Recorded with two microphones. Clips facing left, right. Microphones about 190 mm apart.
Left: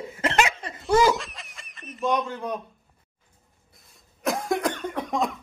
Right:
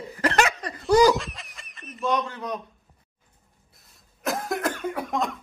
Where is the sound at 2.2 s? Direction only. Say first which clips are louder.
Left 1 dB; 5° left (ahead or behind).